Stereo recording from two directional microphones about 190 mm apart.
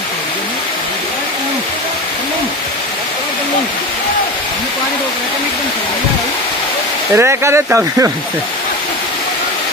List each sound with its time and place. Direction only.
7.2 s speech: 15° right (ahead or behind)